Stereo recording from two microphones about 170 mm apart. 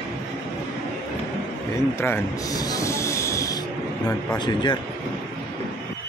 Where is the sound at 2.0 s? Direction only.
15° left (ahead or behind).